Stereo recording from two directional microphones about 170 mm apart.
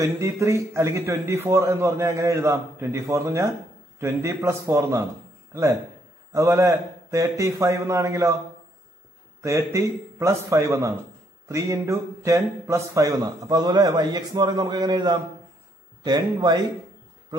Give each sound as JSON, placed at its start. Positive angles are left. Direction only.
{"t": 0.0, "sound": "a man's voice", "side_deg": -15}
{"t": 9.4, "sound": "a man's voice", "side_deg": -15}